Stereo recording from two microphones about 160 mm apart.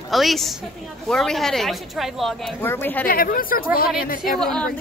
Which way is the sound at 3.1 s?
60° left (ahead or behind).